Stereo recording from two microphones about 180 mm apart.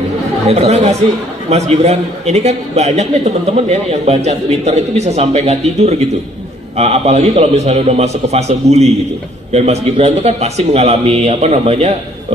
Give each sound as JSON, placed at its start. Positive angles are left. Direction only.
{"t": 0.5, "sound": "a man's voice", "side_deg": -35}